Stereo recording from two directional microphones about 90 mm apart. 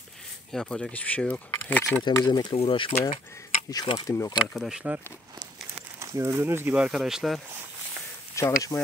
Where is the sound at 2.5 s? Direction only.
85° left.